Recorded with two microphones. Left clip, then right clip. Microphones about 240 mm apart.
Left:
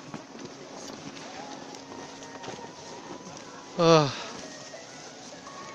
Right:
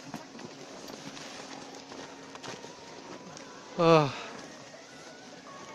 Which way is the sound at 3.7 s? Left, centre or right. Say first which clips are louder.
Left 2 dB; centre.